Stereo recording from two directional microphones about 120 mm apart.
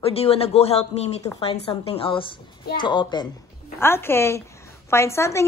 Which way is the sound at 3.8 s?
20° left (ahead or behind).